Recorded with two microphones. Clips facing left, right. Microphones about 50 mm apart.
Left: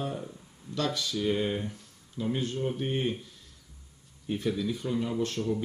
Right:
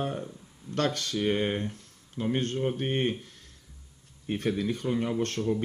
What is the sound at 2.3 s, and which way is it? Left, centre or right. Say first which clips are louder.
Speech: right 4 dB; right.